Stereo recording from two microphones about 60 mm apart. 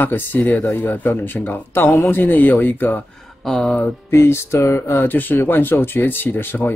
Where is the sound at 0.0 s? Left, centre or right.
Left.